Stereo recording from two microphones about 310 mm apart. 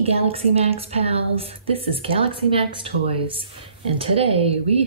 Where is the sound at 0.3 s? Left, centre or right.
Centre.